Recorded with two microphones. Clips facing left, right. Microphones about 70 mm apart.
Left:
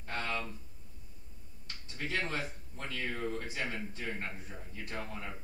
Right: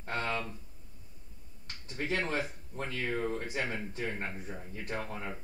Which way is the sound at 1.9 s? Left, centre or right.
Right.